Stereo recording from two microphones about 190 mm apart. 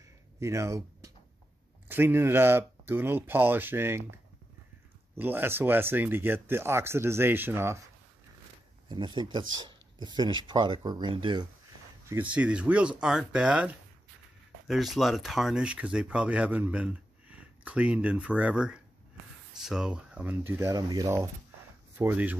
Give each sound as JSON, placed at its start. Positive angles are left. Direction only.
{"t": 0.4, "sound": "speech", "side_deg": -15}
{"t": 5.1, "sound": "speech", "side_deg": -10}
{"t": 8.8, "sound": "speech", "side_deg": -25}
{"t": 12.1, "sound": "speech", "side_deg": -10}